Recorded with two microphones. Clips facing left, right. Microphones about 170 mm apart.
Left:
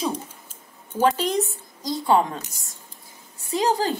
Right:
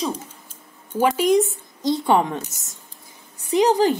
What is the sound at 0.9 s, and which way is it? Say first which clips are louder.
Speech: right 4 dB; 10° right (ahead or behind).